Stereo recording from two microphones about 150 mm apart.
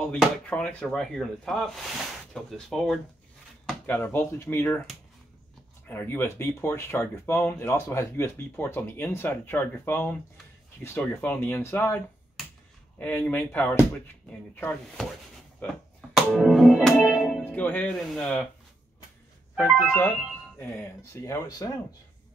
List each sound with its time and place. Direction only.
0.0 s speech: 5° left (ahead or behind)
5.9 s speech: 15° left (ahead or behind)
15.6 s music: centre (ahead or behind)
17.4 s speech: 10° left (ahead or behind)
19.5 s speech: 10° left (ahead or behind)